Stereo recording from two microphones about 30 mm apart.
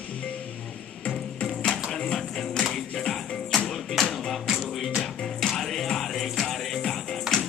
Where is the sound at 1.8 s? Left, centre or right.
Centre.